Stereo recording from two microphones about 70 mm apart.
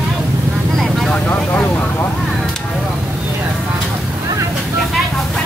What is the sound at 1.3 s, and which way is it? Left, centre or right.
Speech, left.